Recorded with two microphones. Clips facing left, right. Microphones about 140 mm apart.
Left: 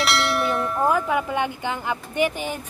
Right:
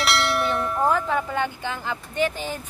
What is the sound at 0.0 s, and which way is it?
Church bell, centre (ahead or behind).